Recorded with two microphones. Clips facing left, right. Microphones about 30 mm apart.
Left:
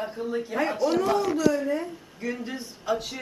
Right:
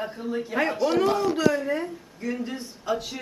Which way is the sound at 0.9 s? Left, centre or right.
Right.